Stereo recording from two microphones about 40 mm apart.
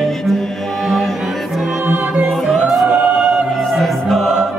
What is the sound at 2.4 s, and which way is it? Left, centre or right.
A capella, centre.